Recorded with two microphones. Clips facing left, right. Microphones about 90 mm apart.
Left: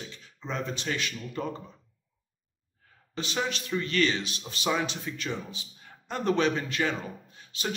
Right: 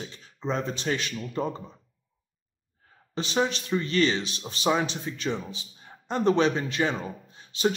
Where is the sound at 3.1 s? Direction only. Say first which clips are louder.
Right 5 dB; 25° right (ahead or behind).